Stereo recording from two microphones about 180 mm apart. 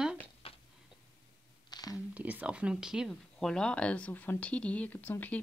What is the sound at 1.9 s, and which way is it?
Speech, 10° right (ahead or behind).